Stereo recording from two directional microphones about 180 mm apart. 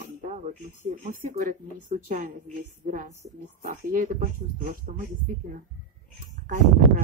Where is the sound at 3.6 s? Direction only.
50° right (ahead or behind).